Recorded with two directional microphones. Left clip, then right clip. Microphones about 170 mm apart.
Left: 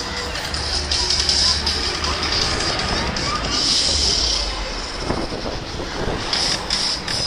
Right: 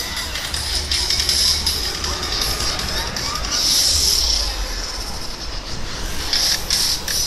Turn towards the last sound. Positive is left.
turn(degrees=-15)  # may be behind; listen again after turning